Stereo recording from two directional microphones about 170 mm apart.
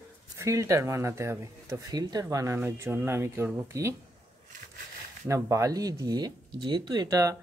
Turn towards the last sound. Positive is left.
turn(degrees=-20)  # may be behind; listen again after turning